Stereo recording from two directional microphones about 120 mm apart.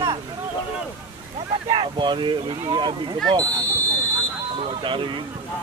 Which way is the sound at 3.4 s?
15° left (ahead or behind).